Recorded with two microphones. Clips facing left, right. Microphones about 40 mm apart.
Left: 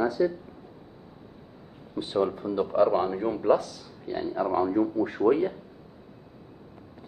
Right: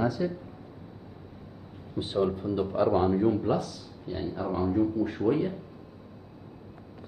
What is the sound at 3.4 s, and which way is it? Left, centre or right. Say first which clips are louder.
Speech: left 5 dB; left.